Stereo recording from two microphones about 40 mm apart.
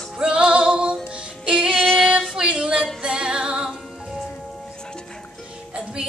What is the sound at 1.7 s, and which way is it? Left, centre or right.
Female singing, centre.